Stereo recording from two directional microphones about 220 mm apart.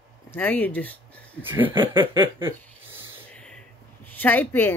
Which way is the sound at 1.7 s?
20° right (ahead or behind).